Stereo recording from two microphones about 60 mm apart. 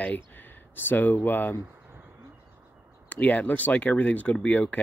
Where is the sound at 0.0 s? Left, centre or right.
Left.